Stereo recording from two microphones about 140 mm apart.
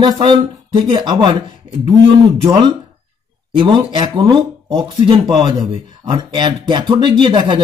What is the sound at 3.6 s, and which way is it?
Speech, 35° right (ahead or behind).